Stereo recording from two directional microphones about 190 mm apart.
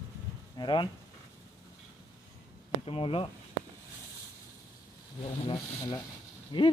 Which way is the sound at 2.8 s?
30° left (ahead or behind).